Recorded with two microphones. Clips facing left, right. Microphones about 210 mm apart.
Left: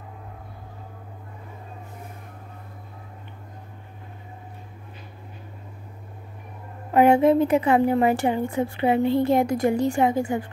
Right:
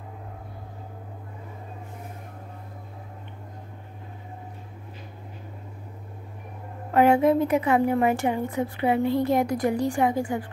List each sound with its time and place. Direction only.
6.9 s a woman's voice: 20° left (ahead or behind)